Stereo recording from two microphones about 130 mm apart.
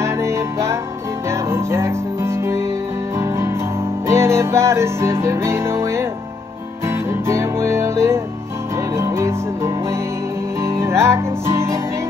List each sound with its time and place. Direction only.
0.0 s music: 20° right (ahead or behind)
7.1 s music: 20° right (ahead or behind)